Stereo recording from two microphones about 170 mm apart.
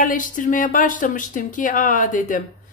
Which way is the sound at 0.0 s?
50° left (ahead or behind).